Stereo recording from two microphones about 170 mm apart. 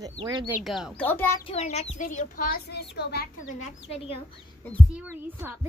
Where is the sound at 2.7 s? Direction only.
75° left (ahead or behind).